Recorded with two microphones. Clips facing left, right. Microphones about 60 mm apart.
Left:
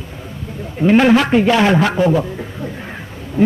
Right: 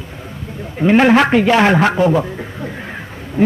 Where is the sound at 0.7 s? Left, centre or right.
Right.